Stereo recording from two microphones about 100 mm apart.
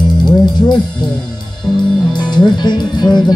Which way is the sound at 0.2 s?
45° left (ahead or behind).